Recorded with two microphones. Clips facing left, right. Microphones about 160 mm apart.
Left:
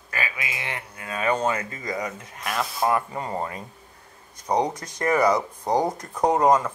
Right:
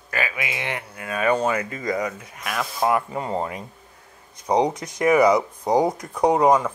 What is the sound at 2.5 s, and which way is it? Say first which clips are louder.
Speech: right 1 dB; centre (ahead or behind).